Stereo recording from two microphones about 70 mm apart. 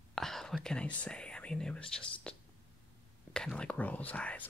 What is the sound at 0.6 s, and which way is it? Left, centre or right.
Speech, centre.